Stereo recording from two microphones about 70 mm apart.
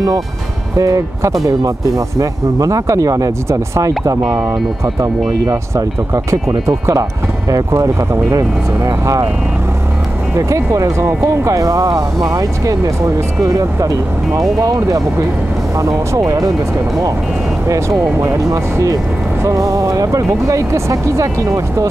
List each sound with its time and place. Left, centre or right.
0.7 s speech: right
5.4 s speech: right
10.3 s speech: right
17.6 s speech: right